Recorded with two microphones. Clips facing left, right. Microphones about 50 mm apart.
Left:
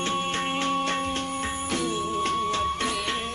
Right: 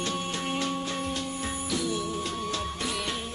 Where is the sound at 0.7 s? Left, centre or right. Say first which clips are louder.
Left 5 dB; left.